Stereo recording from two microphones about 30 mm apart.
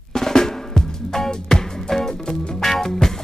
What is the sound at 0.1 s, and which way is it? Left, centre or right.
Drum, centre.